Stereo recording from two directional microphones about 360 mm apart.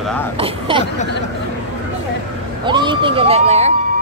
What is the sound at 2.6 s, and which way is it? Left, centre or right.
Speech, centre.